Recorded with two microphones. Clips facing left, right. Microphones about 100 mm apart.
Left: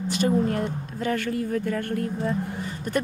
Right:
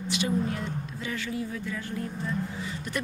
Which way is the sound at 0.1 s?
50° left (ahead or behind).